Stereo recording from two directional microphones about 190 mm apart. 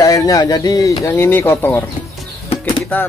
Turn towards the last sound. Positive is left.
turn(degrees=10)  # may be behind; listen again after turning